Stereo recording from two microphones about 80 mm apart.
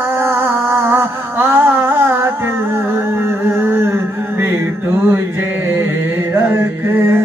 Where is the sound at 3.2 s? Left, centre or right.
Right.